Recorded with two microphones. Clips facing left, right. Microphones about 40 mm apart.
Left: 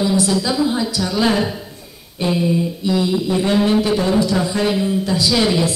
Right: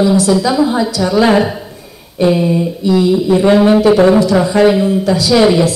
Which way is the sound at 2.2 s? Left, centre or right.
Right.